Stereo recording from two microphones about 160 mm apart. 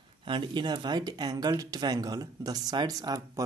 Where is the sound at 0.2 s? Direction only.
30° right (ahead or behind).